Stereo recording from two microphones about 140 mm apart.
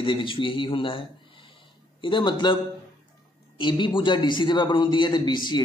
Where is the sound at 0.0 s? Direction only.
35° left (ahead or behind).